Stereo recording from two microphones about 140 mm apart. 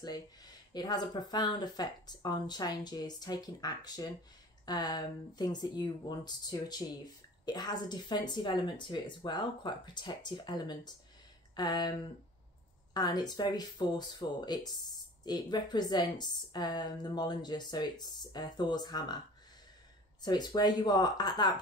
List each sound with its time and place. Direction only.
0.0 s a woman's voice: 30° left (ahead or behind)
20.2 s speech: 30° left (ahead or behind)